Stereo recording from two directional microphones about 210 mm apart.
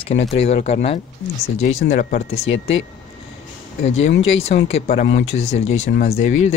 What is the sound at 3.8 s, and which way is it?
Speech, 30° left (ahead or behind).